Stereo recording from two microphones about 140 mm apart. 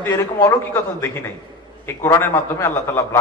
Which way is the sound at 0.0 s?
20° left (ahead or behind).